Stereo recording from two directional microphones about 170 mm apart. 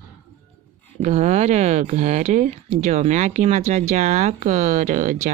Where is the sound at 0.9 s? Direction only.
40° right (ahead or behind).